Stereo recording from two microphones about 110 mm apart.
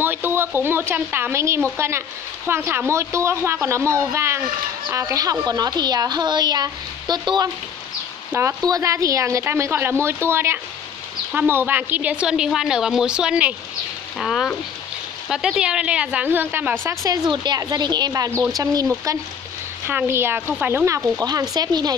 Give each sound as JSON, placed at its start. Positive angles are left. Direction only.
{"t": 0.0, "sound": "a woman's voice", "side_deg": -20}
{"t": 8.3, "sound": "a woman's voice", "side_deg": -25}
{"t": 14.2, "sound": "a woman's voice", "side_deg": 0}
{"t": 17.3, "sound": "a woman's voice", "side_deg": -45}
{"t": 19.9, "sound": "a woman's voice", "side_deg": -20}